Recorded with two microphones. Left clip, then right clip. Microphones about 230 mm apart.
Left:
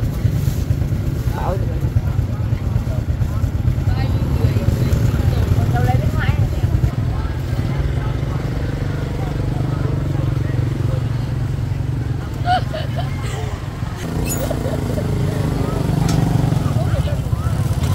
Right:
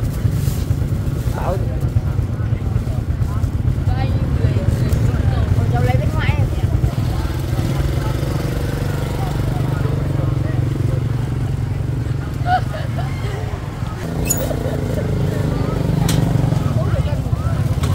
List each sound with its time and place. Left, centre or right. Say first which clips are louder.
12.5 s vehicle: even; left